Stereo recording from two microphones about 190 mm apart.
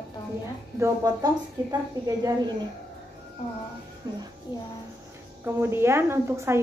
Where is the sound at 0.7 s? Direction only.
15° right (ahead or behind).